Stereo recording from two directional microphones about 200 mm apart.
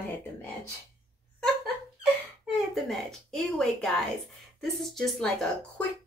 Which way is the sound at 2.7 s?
Centre (ahead or behind).